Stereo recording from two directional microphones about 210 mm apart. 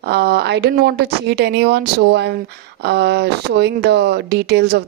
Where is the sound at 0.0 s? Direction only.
50° right (ahead or behind).